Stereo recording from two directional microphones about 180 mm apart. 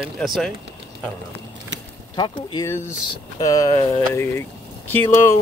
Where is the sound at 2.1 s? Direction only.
25° left (ahead or behind).